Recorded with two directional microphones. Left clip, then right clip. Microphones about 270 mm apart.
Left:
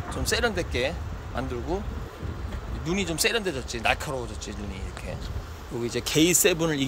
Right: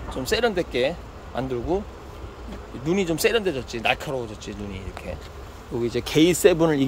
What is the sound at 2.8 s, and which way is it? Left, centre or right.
Speech, centre.